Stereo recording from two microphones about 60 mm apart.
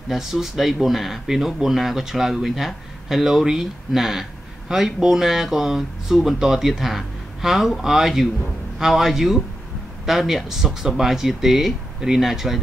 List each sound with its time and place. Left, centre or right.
0.1 s speech: centre